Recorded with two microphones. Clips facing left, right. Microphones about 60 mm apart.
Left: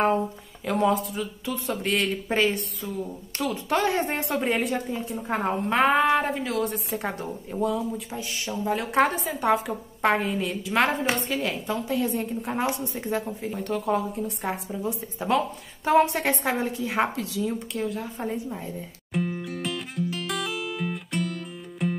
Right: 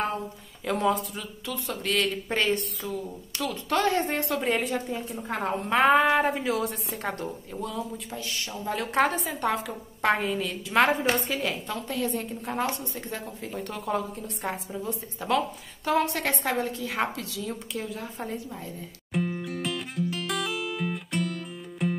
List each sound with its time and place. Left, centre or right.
0.7 s a woman's voice: centre
1.4 s speech: left
1.9 s a woman's voice: centre
3.6 s a woman's voice: centre
5.3 s speech: centre
5.7 s a woman's voice: centre
13.4 s a woman's voice: centre
14.8 s a woman's voice: centre
15.8 s speech: left
16.2 s a woman's voice: centre
17.7 s a woman's voice: centre
18.3 s speech: centre
19.1 s music: centre